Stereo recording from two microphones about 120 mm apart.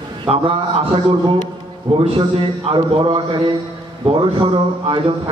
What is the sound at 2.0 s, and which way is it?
A man's voice, 45° right (ahead or behind).